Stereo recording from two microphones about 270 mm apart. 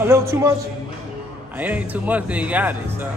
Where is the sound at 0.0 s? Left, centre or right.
Centre.